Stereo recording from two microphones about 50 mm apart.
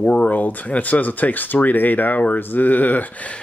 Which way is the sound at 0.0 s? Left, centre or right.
Left.